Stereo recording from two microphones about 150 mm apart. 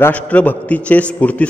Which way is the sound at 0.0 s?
10° left (ahead or behind).